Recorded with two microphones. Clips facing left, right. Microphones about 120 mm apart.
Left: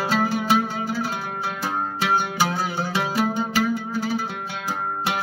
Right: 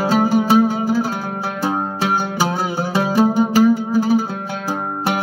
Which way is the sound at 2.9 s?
35° right (ahead or behind).